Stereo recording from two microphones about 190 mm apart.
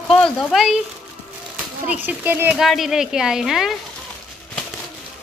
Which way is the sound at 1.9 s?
10° right (ahead or behind).